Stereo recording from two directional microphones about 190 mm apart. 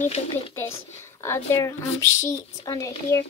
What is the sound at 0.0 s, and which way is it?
Speech, 35° left (ahead or behind).